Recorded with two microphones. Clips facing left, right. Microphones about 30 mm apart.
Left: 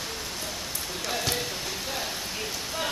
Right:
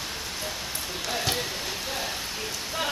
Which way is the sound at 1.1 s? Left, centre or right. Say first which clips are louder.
Right 1 dB; centre.